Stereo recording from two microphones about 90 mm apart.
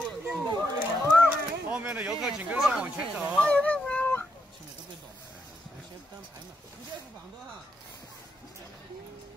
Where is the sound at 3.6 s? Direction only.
15° left (ahead or behind).